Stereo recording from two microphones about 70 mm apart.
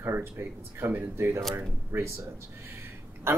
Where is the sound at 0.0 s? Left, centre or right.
Right.